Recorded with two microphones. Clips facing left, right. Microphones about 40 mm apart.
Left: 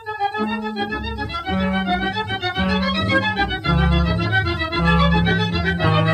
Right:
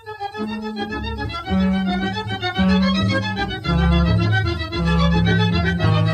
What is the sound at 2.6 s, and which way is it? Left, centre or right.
Music, centre.